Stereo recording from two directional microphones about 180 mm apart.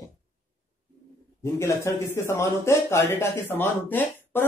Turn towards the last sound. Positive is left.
turn(degrees=10)  # may be behind; listen again after turning